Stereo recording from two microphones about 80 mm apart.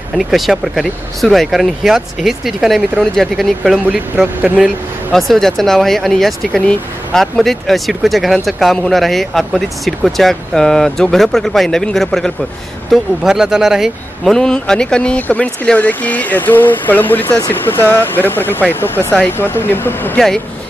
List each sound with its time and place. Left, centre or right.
0.2 s speech: centre
5.1 s speech: centre
14.3 s speech: centre; by 20.2 s left